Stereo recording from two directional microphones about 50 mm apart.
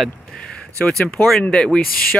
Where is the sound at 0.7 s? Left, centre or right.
Left.